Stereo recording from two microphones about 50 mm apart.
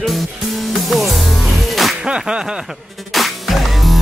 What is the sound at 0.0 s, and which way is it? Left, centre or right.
Music, centre.